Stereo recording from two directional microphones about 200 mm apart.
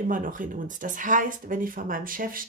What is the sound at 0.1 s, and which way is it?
Speech, 40° right (ahead or behind).